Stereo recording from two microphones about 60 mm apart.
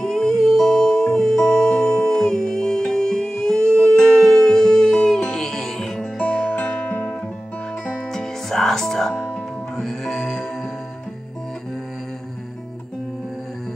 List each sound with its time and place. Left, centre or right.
0.0 s music: centre
8.1 s music: centre